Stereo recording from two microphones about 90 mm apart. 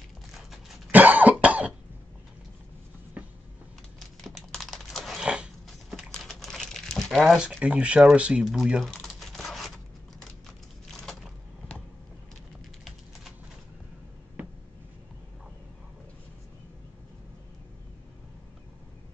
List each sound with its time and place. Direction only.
0.3 s a sound: 5° right (ahead or behind)
0.9 s cough: 20° right (ahead or behind)
4.2 s a sound: centre (ahead or behind)
7.5 s speech: 15° right (ahead or behind)
8.7 s crumpling: centre (ahead or behind)
10.9 s vehicle: 5° left (ahead or behind)